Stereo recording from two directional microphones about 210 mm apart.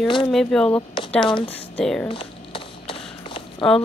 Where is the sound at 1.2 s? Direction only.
20° left (ahead or behind).